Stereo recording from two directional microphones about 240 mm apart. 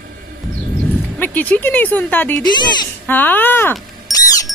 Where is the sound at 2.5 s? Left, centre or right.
Centre.